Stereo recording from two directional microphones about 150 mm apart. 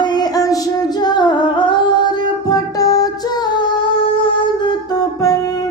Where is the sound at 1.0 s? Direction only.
30° left (ahead or behind).